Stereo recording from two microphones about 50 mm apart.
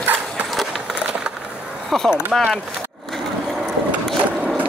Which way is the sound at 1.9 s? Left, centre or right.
Centre.